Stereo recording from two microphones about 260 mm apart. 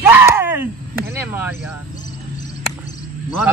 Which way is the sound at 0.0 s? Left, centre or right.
Centre.